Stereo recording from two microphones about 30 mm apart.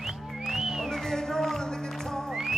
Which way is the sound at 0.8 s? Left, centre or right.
Centre.